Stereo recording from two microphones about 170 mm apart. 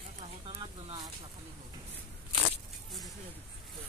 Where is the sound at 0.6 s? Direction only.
20° right (ahead or behind).